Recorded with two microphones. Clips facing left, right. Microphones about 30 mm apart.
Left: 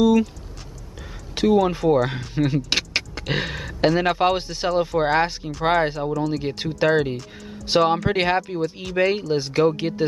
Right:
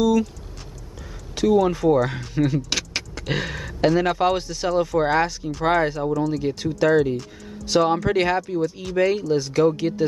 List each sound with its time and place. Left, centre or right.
1.3 s a sound: left
1.7 s speech: centre
2.1 s vehicle: centre
3.3 s speech: centre
6.8 s speech: left